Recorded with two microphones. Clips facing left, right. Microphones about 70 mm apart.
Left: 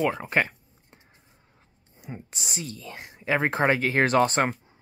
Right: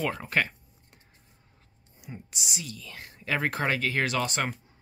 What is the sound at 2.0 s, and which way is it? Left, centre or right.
Speech, left.